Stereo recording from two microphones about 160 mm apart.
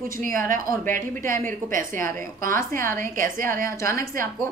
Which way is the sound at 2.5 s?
15° left (ahead or behind).